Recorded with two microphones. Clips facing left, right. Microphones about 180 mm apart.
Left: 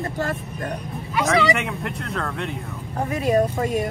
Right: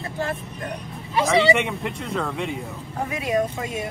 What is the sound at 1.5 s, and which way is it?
Speech, centre (ahead or behind).